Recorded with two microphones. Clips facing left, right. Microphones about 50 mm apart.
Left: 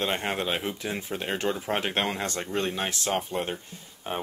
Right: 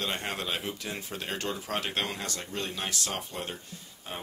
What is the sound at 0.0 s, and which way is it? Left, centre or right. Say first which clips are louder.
Speech: left 5 dB; left.